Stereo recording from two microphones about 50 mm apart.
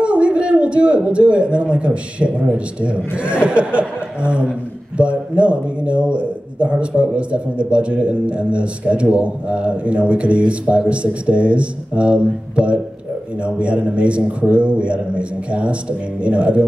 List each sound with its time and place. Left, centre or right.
0.0 s a man's voice: right